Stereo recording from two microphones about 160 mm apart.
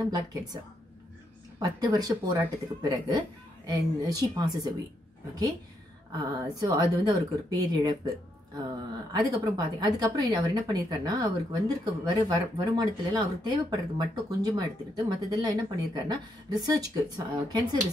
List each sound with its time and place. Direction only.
0.1 s speech: 25° right (ahead or behind)
1.6 s speech: 25° right (ahead or behind)
6.1 s speech: 25° right (ahead or behind)